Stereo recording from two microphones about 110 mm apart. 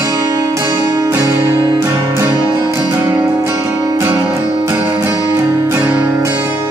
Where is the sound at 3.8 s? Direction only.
30° right (ahead or behind).